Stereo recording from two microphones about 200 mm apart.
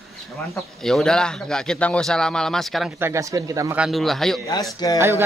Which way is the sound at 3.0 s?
15° right (ahead or behind).